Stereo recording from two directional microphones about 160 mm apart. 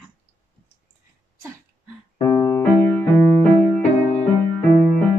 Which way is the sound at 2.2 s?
15° left (ahead or behind).